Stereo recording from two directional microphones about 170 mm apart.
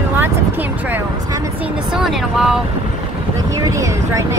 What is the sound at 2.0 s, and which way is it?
Speech, 5° right (ahead or behind).